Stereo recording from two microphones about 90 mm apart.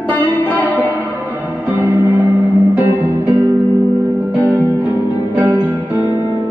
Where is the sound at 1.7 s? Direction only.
20° right (ahead or behind).